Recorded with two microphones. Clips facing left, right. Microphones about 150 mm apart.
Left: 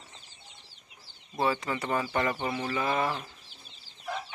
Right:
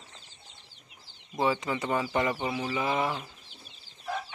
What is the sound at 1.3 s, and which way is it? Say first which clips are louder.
Speech: right 1 dB; 15° right (ahead or behind).